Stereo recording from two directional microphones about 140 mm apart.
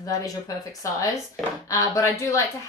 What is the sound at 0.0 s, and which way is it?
A woman's voice, 25° left (ahead or behind).